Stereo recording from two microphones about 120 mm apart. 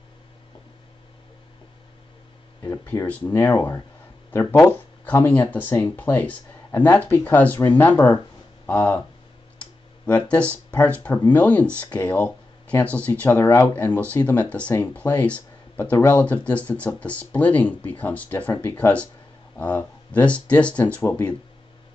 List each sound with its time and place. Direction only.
2.6 s speech: 25° left (ahead or behind)
10.5 s speech: 10° left (ahead or behind)